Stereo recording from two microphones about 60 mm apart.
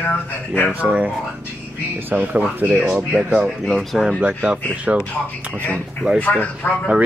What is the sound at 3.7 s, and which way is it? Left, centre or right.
Speech, centre.